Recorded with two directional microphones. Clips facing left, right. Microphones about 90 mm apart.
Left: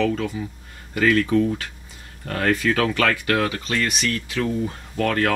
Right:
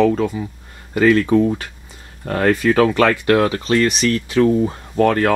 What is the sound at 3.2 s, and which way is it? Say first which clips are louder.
Speech: right 7 dB; 30° right (ahead or behind).